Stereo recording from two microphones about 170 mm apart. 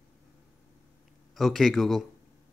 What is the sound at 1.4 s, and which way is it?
Speech, centre (ahead or behind).